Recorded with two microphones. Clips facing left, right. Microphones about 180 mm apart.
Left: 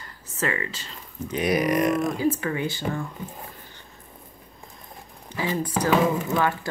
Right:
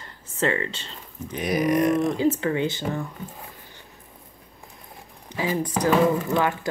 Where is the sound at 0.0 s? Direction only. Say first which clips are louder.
Right 3 dB; 30° right (ahead or behind).